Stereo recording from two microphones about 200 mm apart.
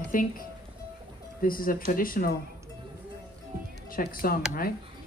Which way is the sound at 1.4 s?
45° left (ahead or behind).